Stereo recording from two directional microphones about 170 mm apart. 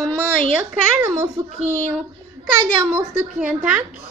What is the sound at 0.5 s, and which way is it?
Speech, 15° right (ahead or behind).